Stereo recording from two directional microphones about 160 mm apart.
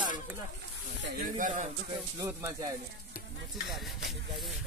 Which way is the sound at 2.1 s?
20° right (ahead or behind).